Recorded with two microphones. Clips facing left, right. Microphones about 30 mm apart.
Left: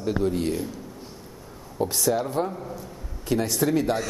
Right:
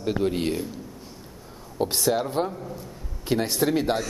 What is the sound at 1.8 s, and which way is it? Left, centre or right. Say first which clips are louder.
Speech: even; right.